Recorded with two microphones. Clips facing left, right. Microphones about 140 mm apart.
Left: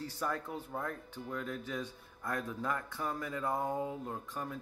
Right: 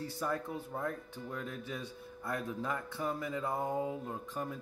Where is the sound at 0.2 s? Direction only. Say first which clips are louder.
Right 1 dB; 15° right (ahead or behind).